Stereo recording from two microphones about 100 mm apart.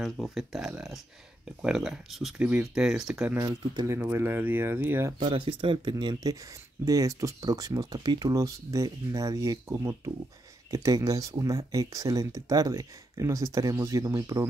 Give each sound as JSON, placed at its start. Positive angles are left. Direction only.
{"t": 0.0, "sound": "speech", "side_deg": 0}
{"t": 2.3, "sound": "speech", "side_deg": -10}
{"t": 4.0, "sound": "speech", "side_deg": -25}
{"t": 5.2, "sound": "speech", "side_deg": -75}
{"t": 6.8, "sound": "speech", "side_deg": -35}